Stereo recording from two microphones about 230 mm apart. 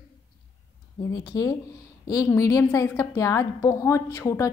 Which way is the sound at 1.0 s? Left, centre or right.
Centre.